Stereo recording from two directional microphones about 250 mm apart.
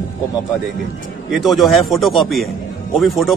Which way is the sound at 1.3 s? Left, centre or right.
Centre.